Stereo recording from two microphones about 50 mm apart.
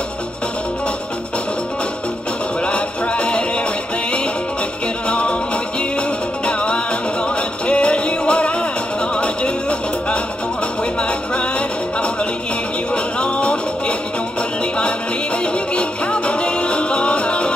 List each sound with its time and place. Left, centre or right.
2.6 s music: left
5.0 s music: left
12.9 s music: left
15.4 s music: left